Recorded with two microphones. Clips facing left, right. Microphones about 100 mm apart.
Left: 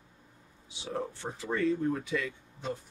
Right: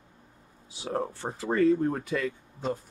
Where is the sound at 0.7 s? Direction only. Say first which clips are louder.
Right 5 dB; 40° right (ahead or behind).